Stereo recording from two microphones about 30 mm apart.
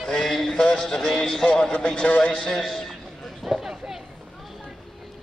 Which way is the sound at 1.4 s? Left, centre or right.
Left.